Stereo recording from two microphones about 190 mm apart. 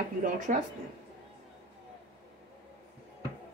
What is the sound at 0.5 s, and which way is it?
Speech, 40° right (ahead or behind).